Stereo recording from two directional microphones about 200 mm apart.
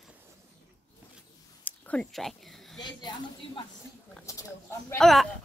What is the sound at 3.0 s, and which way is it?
Speech, 20° left (ahead or behind).